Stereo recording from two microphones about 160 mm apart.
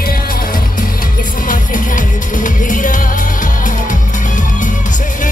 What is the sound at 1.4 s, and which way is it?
Music, 55° left (ahead or behind).